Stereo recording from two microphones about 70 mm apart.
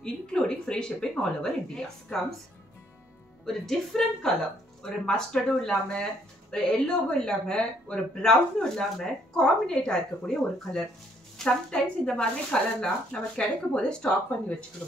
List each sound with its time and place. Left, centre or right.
0.0 s speech: centre
3.4 s a woman's voice: centre